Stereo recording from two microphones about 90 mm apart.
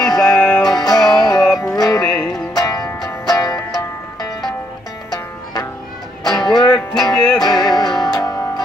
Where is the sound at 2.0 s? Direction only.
5° left (ahead or behind).